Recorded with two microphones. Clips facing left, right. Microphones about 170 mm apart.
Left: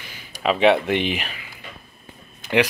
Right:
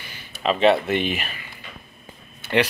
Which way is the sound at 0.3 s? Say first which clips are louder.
Left 1 dB; 10° left (ahead or behind).